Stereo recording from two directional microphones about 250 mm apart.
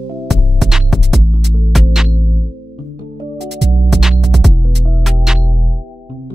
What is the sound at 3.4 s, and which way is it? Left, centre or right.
Music, right.